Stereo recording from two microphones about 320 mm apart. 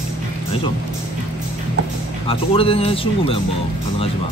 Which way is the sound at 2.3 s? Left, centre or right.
Centre.